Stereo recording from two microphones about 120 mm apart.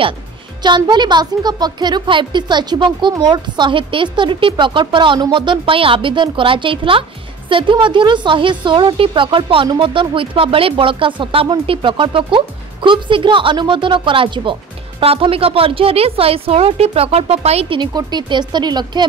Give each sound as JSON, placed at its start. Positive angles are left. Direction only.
{"t": 0.6, "sound": "a woman's voice", "side_deg": -40}
{"t": 17.7, "sound": "speech", "side_deg": -40}